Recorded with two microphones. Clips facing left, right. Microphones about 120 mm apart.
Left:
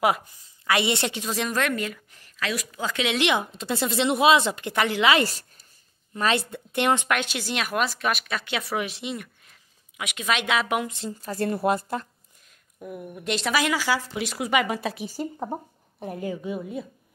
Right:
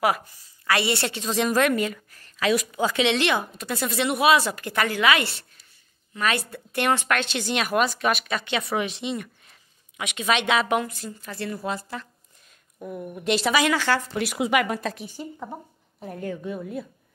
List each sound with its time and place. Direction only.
0.7 s a woman's voice: 20° left (ahead or behind)
1.3 s a woman's voice: 5° right (ahead or behind)
2.0 s a sound: 15° left (ahead or behind)
2.4 s a woman's voice: 15° right (ahead or behind)
2.9 s speech: centre (ahead or behind)
3.2 s speech: 20° left (ahead or behind)
5.2 s a woman's voice: 40° left (ahead or behind)
6.1 s speech: 25° left (ahead or behind); by 10.8 s 5° left (ahead or behind)
10.9 s speech: 25° left (ahead or behind)
11.5 s a woman's voice: 55° left (ahead or behind)
12.8 s speech: 5° left (ahead or behind)
15.0 s a woman's voice: 35° left (ahead or behind)
16.2 s speech: 5° left (ahead or behind)